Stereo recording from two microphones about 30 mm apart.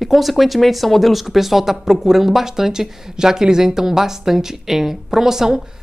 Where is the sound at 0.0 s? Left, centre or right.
Centre.